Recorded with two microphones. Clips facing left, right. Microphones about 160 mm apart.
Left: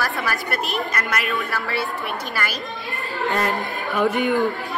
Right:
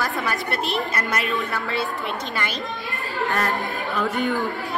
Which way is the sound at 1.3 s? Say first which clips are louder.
Even; 20° right (ahead or behind).